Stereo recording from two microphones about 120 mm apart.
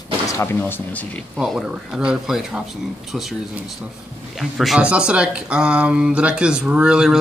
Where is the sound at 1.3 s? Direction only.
5° right (ahead or behind).